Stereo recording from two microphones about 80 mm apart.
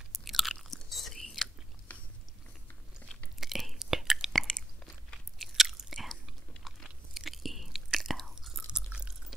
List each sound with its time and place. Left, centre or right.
0.1 s chewing: centre
1.9 s biting: left
3.3 s whispering: centre
4.4 s chewing: centre
5.1 s chewing: centre
7.2 s chewing: centre
8.6 s drip: centre